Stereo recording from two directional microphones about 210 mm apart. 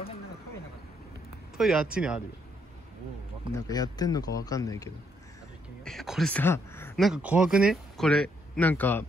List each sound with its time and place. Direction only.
1.6 s speech: centre (ahead or behind)
3.5 s speech: 15° left (ahead or behind)
5.9 s speech: centre (ahead or behind)
7.0 s speech: 5° right (ahead or behind)